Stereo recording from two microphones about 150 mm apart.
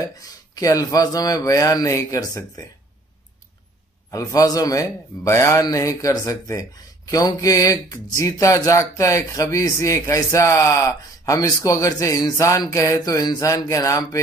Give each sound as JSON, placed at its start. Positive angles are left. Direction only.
{"t": 0.0, "sound": "speech", "side_deg": 25}
{"t": 4.1, "sound": "speech", "side_deg": 20}